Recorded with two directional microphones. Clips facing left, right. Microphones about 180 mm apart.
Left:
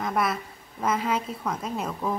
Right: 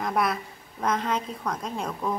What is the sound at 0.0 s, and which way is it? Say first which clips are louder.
A woman's voice: even; centre (ahead or behind).